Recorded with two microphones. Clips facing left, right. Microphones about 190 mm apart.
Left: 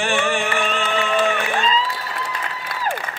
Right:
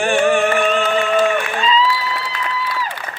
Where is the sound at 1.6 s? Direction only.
45° left (ahead or behind).